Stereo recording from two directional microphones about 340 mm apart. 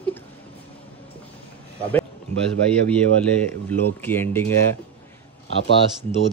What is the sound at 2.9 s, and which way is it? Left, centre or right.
Speech, centre.